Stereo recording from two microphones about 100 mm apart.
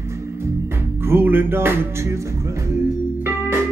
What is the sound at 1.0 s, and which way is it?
Music, 20° right (ahead or behind).